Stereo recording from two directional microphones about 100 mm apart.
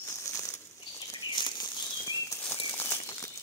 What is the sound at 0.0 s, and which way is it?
Bird flight, 30° left (ahead or behind).